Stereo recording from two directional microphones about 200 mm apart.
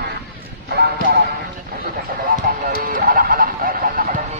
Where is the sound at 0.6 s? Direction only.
50° right (ahead or behind).